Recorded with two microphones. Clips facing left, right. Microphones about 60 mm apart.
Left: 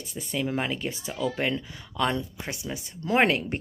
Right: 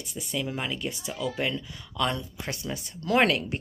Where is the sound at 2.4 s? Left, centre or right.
Centre.